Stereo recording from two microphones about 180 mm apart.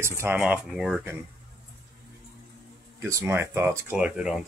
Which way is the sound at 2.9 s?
15° right (ahead or behind).